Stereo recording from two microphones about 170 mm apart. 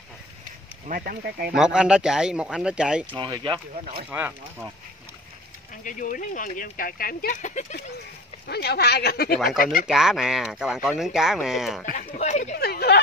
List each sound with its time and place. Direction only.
0.8 s speech: 55° right (ahead or behind)
1.5 s speech: 5° right (ahead or behind)
3.2 s speech: 30° right (ahead or behind)
4.1 s speech: 10° right (ahead or behind)
5.9 s speech: 50° left (ahead or behind)
8.5 s speech: 70° left (ahead or behind)
9.8 s speech: 5° right (ahead or behind)
12.1 s speech: 40° left (ahead or behind)
12.5 s speech: 70° left (ahead or behind)